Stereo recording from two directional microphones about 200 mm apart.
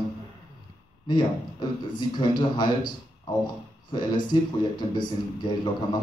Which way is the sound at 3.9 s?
20° left (ahead or behind).